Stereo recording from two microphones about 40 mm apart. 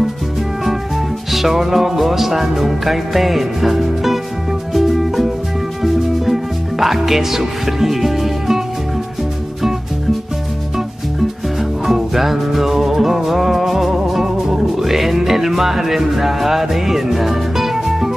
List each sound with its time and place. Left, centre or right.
1.3 s music: centre
11.8 s music: centre